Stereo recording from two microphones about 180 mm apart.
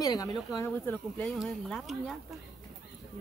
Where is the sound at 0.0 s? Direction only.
20° left (ahead or behind); by 2.1 s centre (ahead or behind).